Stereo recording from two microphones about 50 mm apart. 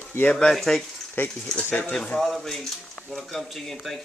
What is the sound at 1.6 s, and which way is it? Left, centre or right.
Speech, left.